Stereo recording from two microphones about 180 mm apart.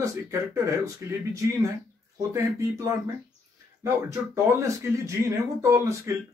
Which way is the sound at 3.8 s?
15° right (ahead or behind).